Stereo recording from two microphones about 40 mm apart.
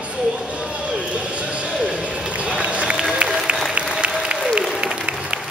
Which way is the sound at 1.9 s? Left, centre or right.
Right.